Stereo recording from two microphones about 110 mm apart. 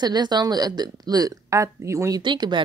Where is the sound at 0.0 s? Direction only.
40° right (ahead or behind).